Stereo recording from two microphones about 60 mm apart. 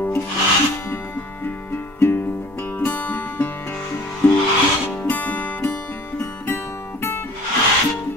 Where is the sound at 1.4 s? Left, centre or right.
Left.